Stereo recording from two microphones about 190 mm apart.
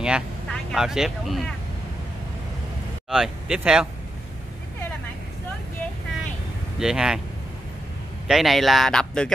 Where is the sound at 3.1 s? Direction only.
5° right (ahead or behind).